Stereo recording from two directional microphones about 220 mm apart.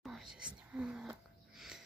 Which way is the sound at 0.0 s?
Centre (ahead or behind).